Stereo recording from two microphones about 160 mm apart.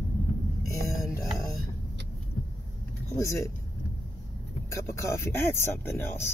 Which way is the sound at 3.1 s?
20° left (ahead or behind).